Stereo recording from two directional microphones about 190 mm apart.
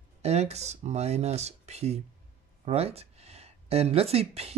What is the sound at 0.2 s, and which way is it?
Speech, 35° right (ahead or behind).